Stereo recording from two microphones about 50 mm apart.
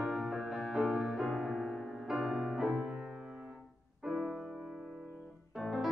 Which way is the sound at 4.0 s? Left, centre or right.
Centre.